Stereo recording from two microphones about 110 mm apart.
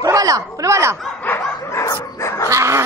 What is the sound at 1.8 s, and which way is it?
Dog, 30° left (ahead or behind).